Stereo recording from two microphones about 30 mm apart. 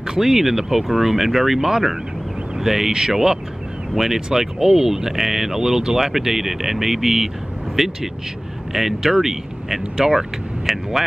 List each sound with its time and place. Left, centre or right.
0.0 s speech: centre
2.9 s speech: centre
3.9 s speech: centre
9.9 s speech: right
10.7 s speech: centre